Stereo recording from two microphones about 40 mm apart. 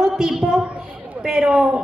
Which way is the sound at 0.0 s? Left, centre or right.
Centre.